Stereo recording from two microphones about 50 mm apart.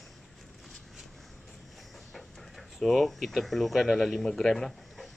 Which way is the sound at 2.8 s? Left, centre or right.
Centre.